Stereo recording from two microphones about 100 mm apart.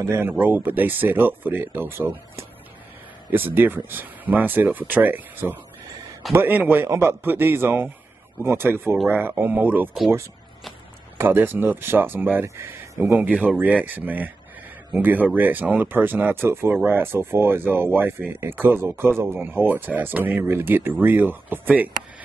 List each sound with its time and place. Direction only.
0.0 s speech: 25° right (ahead or behind)
11.1 s speech: 20° right (ahead or behind)
13.3 s speech: 5° right (ahead or behind)